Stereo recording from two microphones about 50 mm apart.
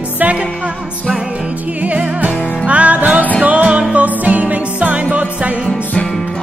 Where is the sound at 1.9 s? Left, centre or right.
Right.